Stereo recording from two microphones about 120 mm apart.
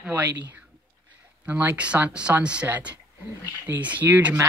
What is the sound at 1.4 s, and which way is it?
Speech, 10° right (ahead or behind).